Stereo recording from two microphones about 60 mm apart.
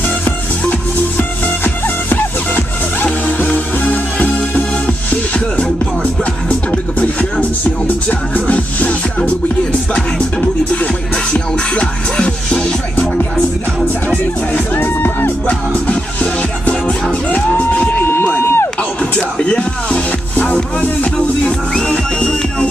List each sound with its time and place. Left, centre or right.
0.7 s music: left
6.7 s music: left
11.3 s music: centre
14.0 s music: left
15.9 s music: left
18.1 s a sound: left
18.8 s music: centre